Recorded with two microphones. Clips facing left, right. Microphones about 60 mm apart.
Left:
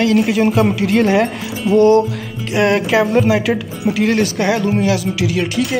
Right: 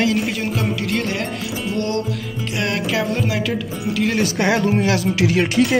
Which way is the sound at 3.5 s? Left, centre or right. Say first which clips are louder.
Left 4 dB; centre.